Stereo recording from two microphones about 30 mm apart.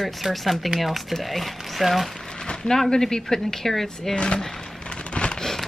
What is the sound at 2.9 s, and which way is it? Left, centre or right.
Speech, centre.